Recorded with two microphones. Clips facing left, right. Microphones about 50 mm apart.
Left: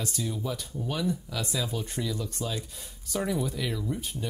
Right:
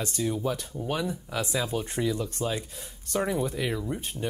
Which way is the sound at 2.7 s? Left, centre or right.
Centre.